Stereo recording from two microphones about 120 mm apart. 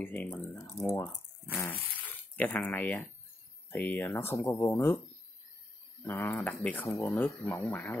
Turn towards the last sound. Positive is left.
turn(degrees=15)  # may be behind; listen again after turning